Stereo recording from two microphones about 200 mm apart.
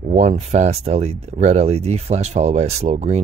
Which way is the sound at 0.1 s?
35° right (ahead or behind).